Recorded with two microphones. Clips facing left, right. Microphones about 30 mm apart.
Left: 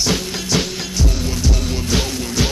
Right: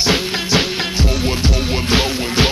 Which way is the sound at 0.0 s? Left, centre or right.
Right.